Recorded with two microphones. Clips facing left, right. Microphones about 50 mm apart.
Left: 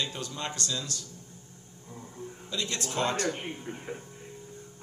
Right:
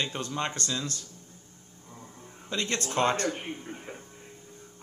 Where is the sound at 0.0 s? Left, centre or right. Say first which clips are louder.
Right 3 dB; right.